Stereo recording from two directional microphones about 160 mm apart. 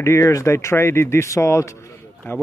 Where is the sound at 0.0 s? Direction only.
20° left (ahead or behind).